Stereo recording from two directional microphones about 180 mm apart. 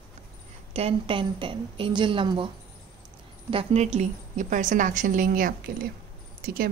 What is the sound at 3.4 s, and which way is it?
A woman's voice, 35° right (ahead or behind).